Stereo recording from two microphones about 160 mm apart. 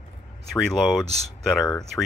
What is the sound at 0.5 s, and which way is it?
Speech, centre (ahead or behind).